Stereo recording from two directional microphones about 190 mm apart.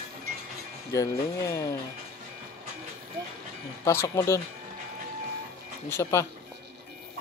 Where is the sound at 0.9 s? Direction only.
15° left (ahead or behind).